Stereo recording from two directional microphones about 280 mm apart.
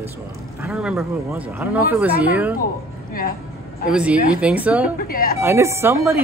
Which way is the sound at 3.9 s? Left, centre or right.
Centre.